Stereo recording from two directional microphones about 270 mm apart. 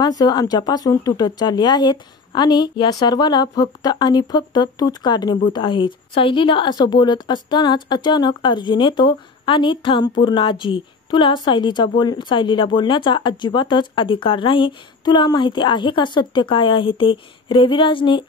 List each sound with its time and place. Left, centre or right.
0.0 s a woman's voice: centre